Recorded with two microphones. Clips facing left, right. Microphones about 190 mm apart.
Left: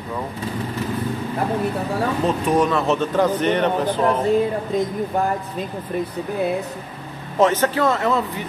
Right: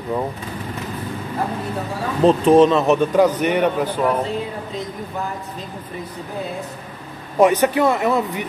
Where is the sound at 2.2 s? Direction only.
25° right (ahead or behind); by 4.2 s 10° right (ahead or behind).